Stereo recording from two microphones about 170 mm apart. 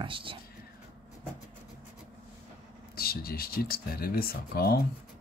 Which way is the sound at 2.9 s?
60° left (ahead or behind).